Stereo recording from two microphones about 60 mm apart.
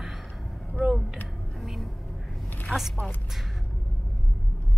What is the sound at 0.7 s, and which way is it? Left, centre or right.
Speech, centre.